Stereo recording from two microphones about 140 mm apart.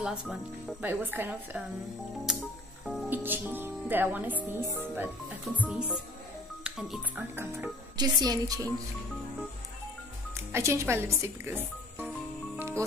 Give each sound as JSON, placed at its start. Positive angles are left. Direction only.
{"t": 0.0, "sound": "speech", "side_deg": -5}
{"t": 0.8, "sound": "speech", "side_deg": -15}
{"t": 2.8, "sound": "music", "side_deg": 0}
{"t": 3.1, "sound": "speech", "side_deg": -15}
{"t": 8.0, "sound": "speech", "side_deg": -30}
{"t": 10.3, "sound": "speech", "side_deg": -20}